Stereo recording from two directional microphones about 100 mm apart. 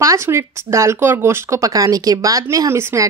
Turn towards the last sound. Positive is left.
turn(degrees=-25)  # may be behind; listen again after turning